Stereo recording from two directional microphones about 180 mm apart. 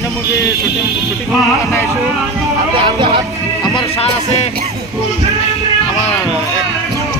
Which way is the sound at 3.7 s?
35° left (ahead or behind).